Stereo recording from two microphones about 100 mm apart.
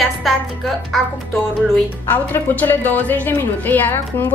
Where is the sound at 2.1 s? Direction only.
20° left (ahead or behind).